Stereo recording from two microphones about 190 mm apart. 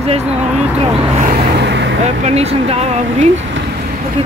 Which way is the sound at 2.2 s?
35° right (ahead or behind).